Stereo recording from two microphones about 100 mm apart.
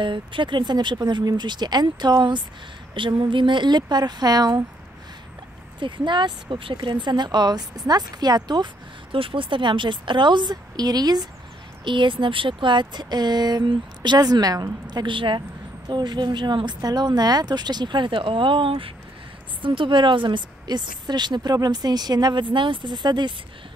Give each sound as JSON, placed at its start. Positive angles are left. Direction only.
{"t": 0.0, "sound": "a woman's voice", "side_deg": -55}
{"t": 5.8, "sound": "a woman's voice", "side_deg": -50}
{"t": 9.1, "sound": "a woman's voice", "side_deg": -60}
{"t": 11.8, "sound": "a woman's voice", "side_deg": -55}